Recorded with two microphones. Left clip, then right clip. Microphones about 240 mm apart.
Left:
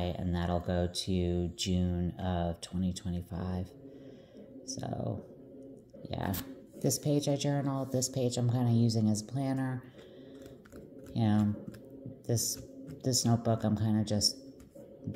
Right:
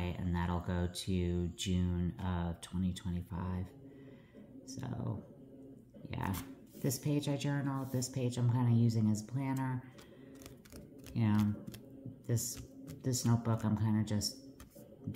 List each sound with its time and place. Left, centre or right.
0.0 s speech: centre
4.7 s speech: centre
11.1 s speech: centre